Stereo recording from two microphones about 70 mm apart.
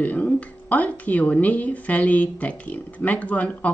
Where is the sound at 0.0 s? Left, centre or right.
Left.